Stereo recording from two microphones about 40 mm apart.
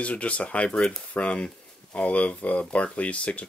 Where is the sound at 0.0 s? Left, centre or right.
Left.